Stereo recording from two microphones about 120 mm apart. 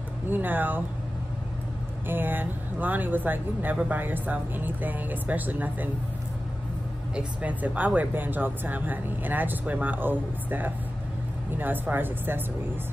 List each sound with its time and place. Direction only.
0.3 s speech: 15° right (ahead or behind)
2.0 s speech: 15° right (ahead or behind)
7.2 s speech: 10° right (ahead or behind)